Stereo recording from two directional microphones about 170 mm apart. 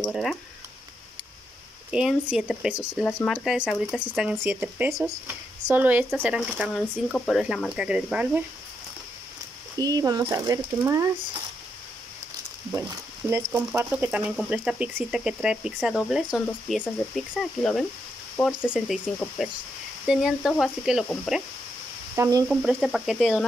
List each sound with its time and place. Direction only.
0.0 s speech: centre (ahead or behind)
1.9 s speech: 5° right (ahead or behind)
3.0 s speech: 15° left (ahead or behind)
3.3 s speech: 5° right (ahead or behind)
9.8 s speech: 20° right (ahead or behind)
12.7 s frying: 15° right (ahead or behind)
13.4 s speech: 5° right (ahead or behind)
22.1 s speech: 15° right (ahead or behind)
22.5 s speech: 5° right (ahead or behind)